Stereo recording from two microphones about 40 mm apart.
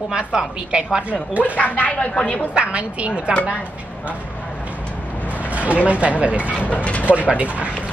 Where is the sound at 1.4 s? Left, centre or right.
Left.